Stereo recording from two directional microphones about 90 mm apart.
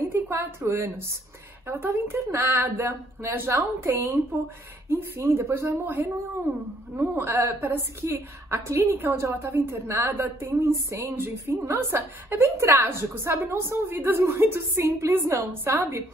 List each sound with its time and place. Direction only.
0.1 s a woman's voice: 25° right (ahead or behind)
7.2 s a woman's voice: 30° right (ahead or behind)